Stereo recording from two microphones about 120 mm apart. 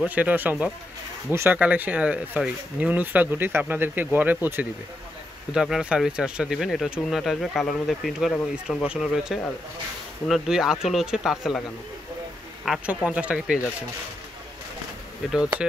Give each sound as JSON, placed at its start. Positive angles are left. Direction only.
{"t": 0.0, "sound": "speech", "side_deg": -10}
{"t": 5.5, "sound": "speech", "side_deg": -5}
{"t": 12.8, "sound": "speech", "side_deg": -10}